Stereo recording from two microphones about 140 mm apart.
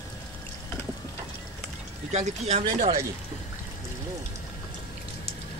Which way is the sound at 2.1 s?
55° right (ahead or behind).